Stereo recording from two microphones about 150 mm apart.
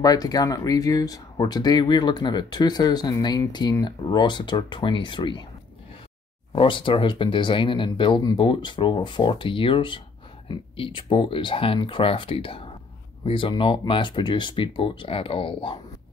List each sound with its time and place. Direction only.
0.0 s speech: 25° left (ahead or behind)
6.5 s speech: 35° left (ahead or behind)